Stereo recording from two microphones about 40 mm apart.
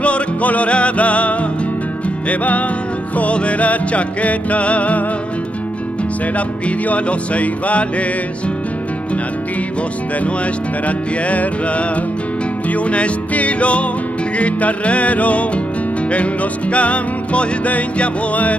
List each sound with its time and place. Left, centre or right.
0.0 s music: left
6.9 s music: left
10.2 s music: left